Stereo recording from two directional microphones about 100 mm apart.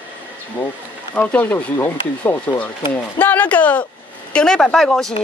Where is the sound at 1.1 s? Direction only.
15° left (ahead or behind).